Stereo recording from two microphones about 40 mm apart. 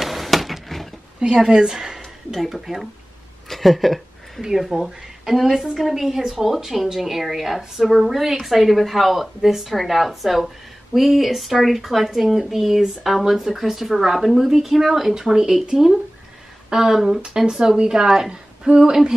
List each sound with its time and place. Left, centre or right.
0.0 s a sound: centre
1.2 s speech: centre
2.0 s speech: centre
4.4 s speech: centre
16.7 s a woman's voice: centre